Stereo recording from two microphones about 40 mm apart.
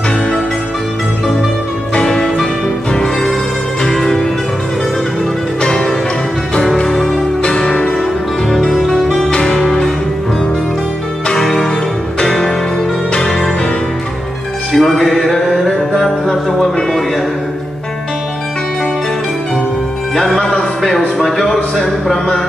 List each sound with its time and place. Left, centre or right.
2.0 s music: centre
3.8 s music: centre
5.6 s music: centre
6.9 s music: centre
7.4 s music: left
8.5 s music: centre
9.3 s music: left
9.6 s music: centre
11.3 s music: centre
14.7 s music: centre
20.3 s music: centre
21.7 s a sound: centre